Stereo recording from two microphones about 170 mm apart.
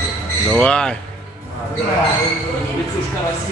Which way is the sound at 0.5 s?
5° left (ahead or behind).